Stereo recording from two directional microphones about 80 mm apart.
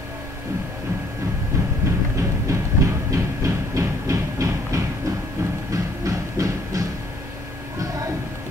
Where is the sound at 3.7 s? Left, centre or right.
Right.